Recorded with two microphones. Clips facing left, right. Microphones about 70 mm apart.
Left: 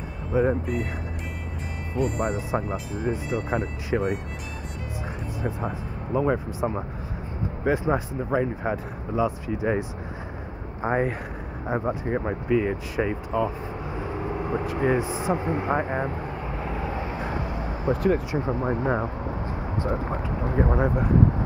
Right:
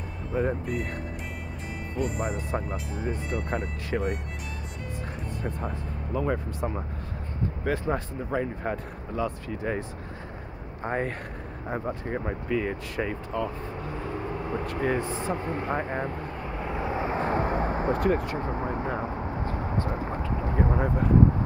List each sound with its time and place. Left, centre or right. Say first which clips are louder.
0.3 s speech: left 5 dB; centre
2.0 s speech: left 4 dB; centre
5.4 s speech: left 5 dB; centre
17.0 s vehicle: right 4 dB; right
17.9 s speech: left 2 dB; centre
18.7 s a sound: left 5 dB; left
20.5 s speech: left 4 dB; centre